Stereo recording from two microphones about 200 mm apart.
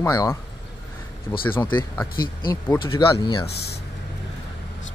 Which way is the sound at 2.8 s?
25° left (ahead or behind).